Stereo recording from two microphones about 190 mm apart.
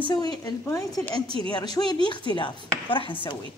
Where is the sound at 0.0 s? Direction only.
20° left (ahead or behind).